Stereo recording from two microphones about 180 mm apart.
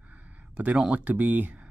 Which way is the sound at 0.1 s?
5° right (ahead or behind).